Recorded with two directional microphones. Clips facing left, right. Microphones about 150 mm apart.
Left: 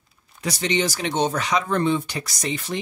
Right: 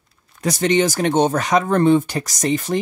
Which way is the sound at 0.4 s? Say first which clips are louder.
Right 6 dB; 50° right (ahead or behind).